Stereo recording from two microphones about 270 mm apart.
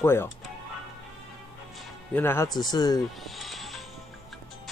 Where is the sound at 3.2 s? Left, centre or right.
Centre.